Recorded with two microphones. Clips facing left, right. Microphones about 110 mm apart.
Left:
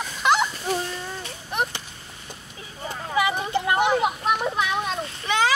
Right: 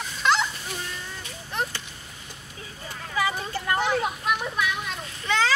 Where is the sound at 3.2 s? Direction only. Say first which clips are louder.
Left 4 dB; 20° left (ahead or behind).